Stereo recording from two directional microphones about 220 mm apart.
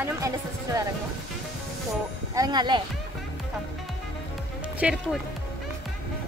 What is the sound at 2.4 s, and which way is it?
Speech, 20° right (ahead or behind).